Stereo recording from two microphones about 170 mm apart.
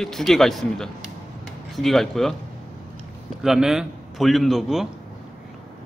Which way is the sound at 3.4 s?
5° right (ahead or behind).